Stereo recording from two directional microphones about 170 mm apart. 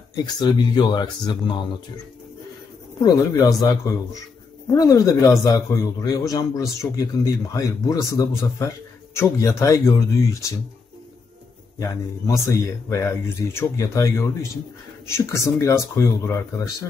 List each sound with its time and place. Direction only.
0.1 s speech: 25° left (ahead or behind)
3.0 s speech: 20° left (ahead or behind)
11.8 s speech: 20° left (ahead or behind)